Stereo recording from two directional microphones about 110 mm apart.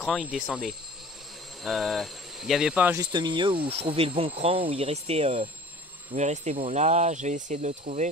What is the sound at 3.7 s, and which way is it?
Speech, 60° right (ahead or behind).